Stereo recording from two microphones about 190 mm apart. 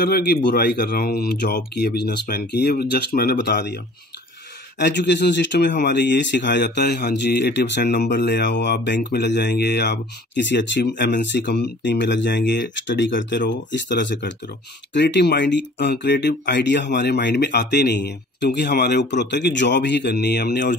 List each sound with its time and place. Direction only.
0.0 s speech: 55° left (ahead or behind)